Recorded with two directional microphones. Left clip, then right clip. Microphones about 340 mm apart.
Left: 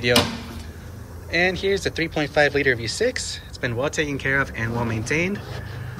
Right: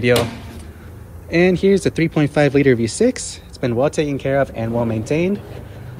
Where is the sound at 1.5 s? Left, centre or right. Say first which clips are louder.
Right 7 dB; centre.